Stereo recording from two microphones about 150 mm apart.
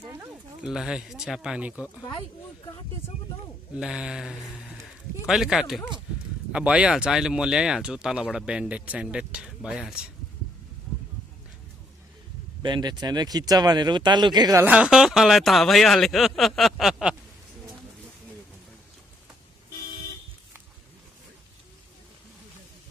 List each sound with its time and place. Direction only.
0.2 s speech: 5° right (ahead or behind)
3.7 s speech: 5° right (ahead or behind)
12.6 s speech: 30° right (ahead or behind)
14.6 s speech: 10° right (ahead or behind)